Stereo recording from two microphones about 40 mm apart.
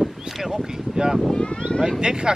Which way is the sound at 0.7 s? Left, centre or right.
Centre.